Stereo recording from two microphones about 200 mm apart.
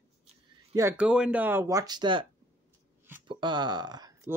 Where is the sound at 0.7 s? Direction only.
10° right (ahead or behind).